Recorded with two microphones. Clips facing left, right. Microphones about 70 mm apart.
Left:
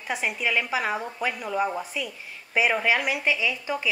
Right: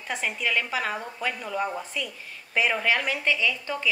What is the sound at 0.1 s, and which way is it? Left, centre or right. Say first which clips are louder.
A woman's voice: left 1 dB; centre.